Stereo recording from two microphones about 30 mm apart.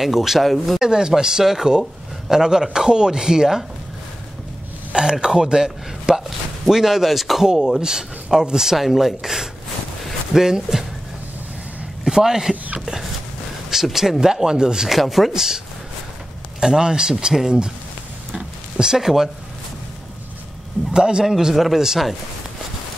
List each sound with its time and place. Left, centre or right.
0.0 s speech: centre
0.4 s speech: centre
0.7 s speech: right
4.9 s speech: right; by 7.8 s centre
7.8 s speech: right
8.7 s speech: centre
12.1 s speech: centre
13.9 s speech: centre
14.9 s speech: centre
15.3 s speech: centre
18.3 s a sound: right
20.9 s speech: right